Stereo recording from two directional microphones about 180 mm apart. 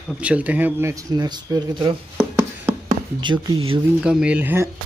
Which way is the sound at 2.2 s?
10° right (ahead or behind).